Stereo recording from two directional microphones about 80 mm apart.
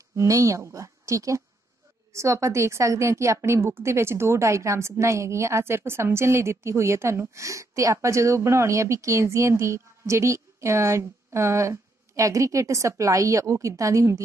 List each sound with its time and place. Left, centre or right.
0.1 s a woman's voice: right